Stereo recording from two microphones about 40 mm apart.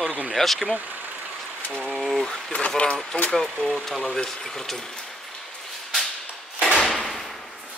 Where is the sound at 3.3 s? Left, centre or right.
Centre.